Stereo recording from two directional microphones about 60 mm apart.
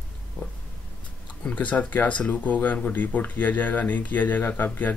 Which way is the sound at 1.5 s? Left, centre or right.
Left.